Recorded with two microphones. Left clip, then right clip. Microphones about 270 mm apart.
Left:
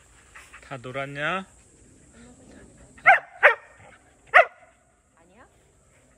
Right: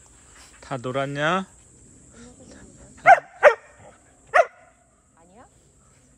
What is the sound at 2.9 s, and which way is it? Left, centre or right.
Dog, right.